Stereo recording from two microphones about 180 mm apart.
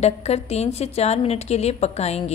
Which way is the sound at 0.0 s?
35° left (ahead or behind).